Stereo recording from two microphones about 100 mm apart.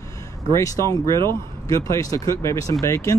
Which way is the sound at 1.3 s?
30° left (ahead or behind).